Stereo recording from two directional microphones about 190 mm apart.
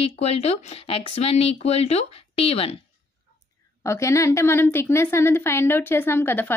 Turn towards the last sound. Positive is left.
turn(degrees=10)  # may be behind; listen again after turning